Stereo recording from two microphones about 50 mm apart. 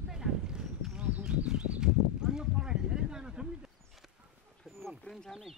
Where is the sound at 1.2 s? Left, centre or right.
Centre.